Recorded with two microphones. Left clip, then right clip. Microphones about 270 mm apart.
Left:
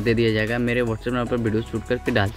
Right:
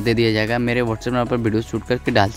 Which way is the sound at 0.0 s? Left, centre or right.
Right.